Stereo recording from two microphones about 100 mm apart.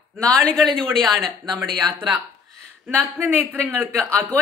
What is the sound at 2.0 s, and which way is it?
Speech, 15° right (ahead or behind).